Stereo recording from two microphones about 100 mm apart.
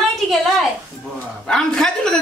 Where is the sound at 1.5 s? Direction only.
5° left (ahead or behind).